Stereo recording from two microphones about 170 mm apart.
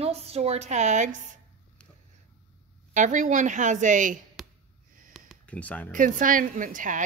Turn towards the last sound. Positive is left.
turn(degrees=-50)  # may be behind; listen again after turning